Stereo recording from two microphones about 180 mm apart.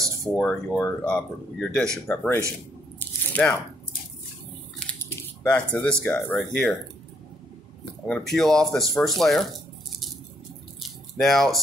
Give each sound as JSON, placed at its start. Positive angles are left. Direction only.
{"t": 0.4, "sound": "speech", "side_deg": 5}
{"t": 3.0, "sound": "biting", "side_deg": 10}
{"t": 4.7, "sound": "speech", "side_deg": 10}
{"t": 8.1, "sound": "speech", "side_deg": 0}
{"t": 10.8, "sound": "a sound", "side_deg": 0}